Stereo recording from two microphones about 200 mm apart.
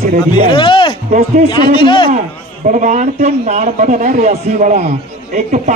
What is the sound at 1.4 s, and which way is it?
Speech, 25° left (ahead or behind).